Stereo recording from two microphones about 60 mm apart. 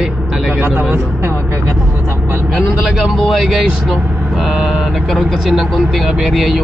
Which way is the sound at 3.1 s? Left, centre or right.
Centre.